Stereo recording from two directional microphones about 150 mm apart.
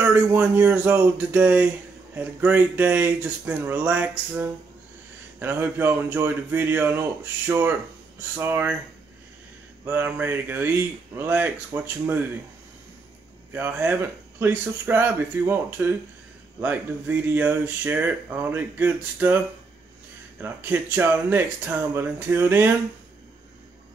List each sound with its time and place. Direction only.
0.0 s speech: 10° right (ahead or behind)
9.8 s speech: 10° right (ahead or behind)
13.5 s speech: 10° right (ahead or behind)